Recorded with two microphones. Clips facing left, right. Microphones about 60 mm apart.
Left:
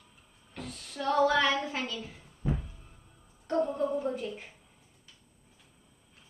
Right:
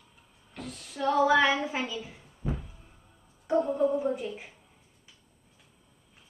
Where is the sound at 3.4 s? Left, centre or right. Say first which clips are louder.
Right 3 dB; centre.